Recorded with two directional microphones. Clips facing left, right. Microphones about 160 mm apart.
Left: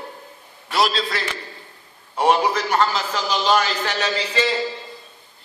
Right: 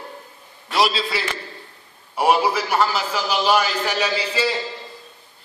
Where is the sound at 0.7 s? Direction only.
5° right (ahead or behind).